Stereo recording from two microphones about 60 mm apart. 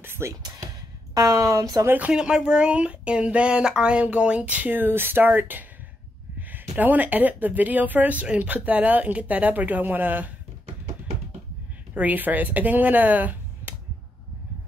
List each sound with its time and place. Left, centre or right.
0.0 s a sound: right
1.1 s speech: right
1.9 s speech: right
2.1 s speech: centre; by 5.7 s right
6.8 s speech: right
11.9 s speech: right